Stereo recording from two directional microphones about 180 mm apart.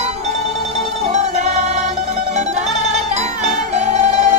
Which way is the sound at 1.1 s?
40° right (ahead or behind).